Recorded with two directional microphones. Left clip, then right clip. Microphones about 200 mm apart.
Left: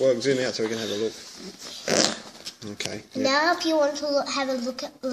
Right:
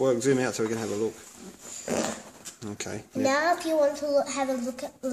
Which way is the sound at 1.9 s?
45° left (ahead or behind).